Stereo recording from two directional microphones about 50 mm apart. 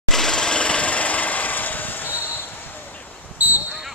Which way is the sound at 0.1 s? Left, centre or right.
Centre.